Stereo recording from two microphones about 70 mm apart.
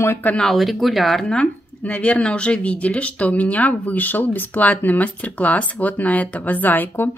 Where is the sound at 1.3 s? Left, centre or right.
Centre.